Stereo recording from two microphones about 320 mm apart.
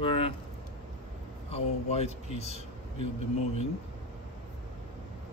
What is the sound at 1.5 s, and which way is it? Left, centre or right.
A man's voice, centre.